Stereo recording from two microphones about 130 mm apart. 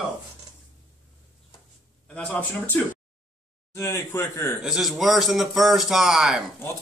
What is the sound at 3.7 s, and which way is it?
Speech, 20° left (ahead or behind).